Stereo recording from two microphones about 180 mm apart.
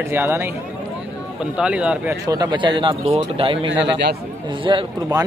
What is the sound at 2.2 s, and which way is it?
Speech, 20° right (ahead or behind).